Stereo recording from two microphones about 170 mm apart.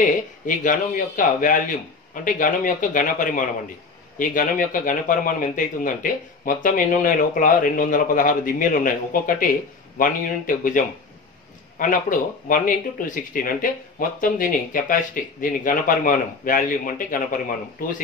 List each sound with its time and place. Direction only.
0.0 s speech: 50° left (ahead or behind)